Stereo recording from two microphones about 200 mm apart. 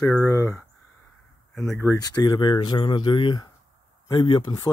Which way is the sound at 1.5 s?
Centre (ahead or behind).